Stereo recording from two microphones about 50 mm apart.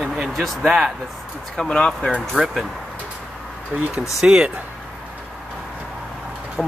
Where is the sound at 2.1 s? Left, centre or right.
Right.